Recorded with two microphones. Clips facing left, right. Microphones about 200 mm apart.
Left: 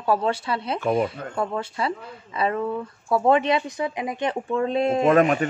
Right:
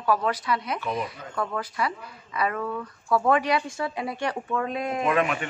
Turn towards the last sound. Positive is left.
turn(degrees=45)  # may be behind; listen again after turning